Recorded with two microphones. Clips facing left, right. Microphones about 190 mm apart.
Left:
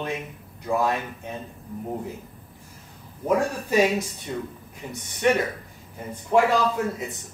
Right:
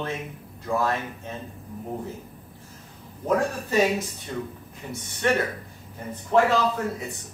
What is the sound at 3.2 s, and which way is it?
Speech, 10° left (ahead or behind).